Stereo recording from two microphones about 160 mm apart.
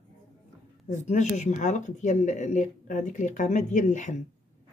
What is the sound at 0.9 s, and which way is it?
Speech, 45° left (ahead or behind).